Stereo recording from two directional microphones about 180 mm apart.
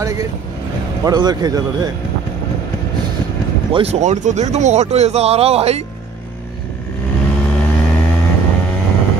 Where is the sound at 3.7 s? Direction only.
35° right (ahead or behind).